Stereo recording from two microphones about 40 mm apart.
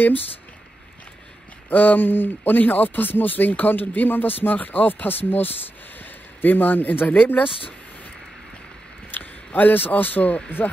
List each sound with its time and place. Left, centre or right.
1.7 s speech: left
9.1 s speech: left
10.6 s speech: left